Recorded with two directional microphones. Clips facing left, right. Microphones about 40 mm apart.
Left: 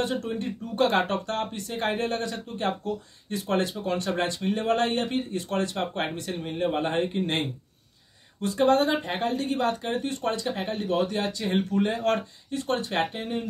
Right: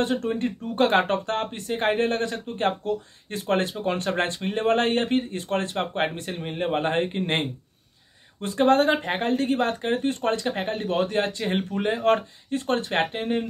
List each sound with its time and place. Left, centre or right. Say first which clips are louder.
0.2 s speech: right 4 dB; right